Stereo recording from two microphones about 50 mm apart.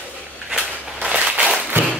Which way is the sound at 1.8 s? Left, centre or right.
Right.